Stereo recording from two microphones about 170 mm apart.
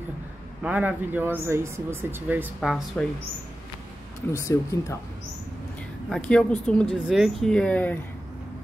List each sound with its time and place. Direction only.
0.6 s speech: 10° right (ahead or behind)
2.9 s speech: 5° left (ahead or behind)
4.3 s speech: 15° left (ahead or behind)
6.0 s speech: 5° left (ahead or behind)